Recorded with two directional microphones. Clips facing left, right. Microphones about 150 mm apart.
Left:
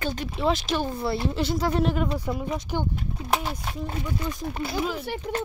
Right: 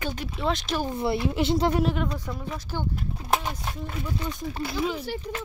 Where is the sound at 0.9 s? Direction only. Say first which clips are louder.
Right 1 dB; 20° right (ahead or behind).